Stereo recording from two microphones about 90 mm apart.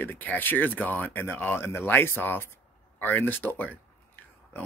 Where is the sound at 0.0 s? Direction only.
20° left (ahead or behind).